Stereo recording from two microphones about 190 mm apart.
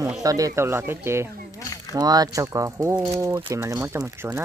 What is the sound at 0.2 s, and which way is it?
Speech, 20° right (ahead or behind).